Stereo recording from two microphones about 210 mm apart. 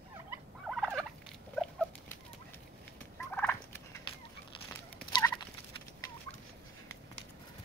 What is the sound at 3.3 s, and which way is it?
Fowl, 10° left (ahead or behind).